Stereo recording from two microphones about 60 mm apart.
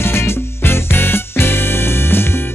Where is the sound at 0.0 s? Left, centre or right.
Left.